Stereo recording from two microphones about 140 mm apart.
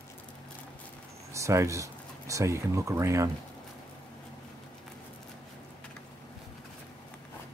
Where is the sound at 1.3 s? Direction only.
20° right (ahead or behind).